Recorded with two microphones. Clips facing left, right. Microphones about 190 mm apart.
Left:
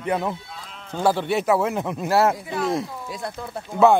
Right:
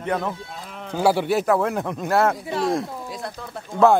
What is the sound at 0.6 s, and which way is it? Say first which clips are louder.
Livestock: right 6 dB; 55° right (ahead or behind).